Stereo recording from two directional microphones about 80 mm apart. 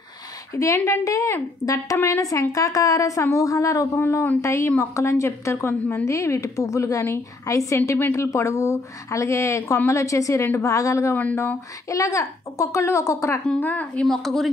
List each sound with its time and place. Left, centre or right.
0.8 s a woman's voice: left
13.6 s a woman's voice: centre
14.0 s speech: centre